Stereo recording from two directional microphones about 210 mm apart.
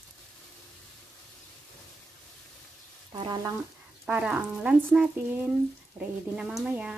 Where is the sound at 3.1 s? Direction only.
20° right (ahead or behind).